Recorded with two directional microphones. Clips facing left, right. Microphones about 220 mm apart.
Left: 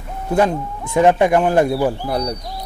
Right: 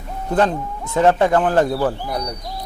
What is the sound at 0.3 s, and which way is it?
Speech, 10° left (ahead or behind).